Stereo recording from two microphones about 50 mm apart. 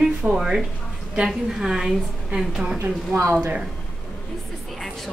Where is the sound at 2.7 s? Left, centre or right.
Right.